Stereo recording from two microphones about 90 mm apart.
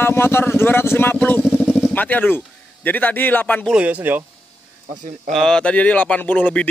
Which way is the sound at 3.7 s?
15° right (ahead or behind).